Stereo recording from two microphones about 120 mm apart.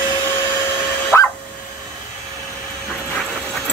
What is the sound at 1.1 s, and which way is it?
Vacuum cleaner, 20° left (ahead or behind).